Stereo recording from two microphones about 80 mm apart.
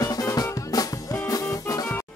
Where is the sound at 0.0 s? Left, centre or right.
Left.